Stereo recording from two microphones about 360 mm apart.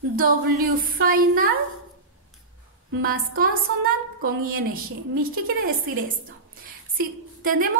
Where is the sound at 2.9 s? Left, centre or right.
Right.